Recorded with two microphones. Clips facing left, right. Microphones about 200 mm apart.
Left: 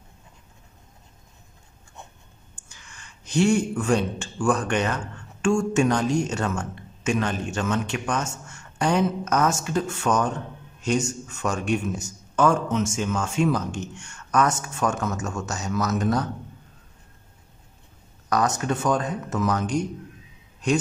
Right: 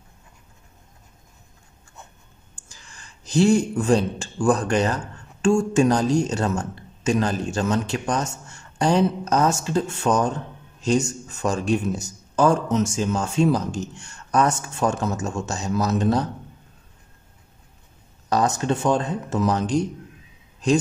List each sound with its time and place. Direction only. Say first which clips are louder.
2.7 s speech: right 1 dB; 35° right (ahead or behind)
18.3 s speech: right 2 dB; 30° right (ahead or behind)